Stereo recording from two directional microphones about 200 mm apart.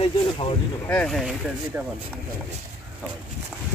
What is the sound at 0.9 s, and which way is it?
Speech, 5° left (ahead or behind).